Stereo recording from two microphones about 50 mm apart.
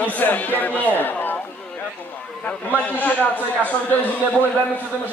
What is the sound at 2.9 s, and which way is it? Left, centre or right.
Speech, left.